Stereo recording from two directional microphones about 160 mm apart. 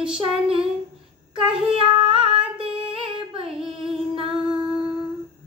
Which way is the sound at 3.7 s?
30° right (ahead or behind).